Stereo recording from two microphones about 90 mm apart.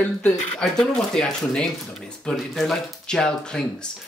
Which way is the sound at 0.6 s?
5° left (ahead or behind).